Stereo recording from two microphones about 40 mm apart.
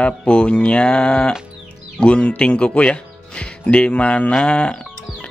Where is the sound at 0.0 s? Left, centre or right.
Left.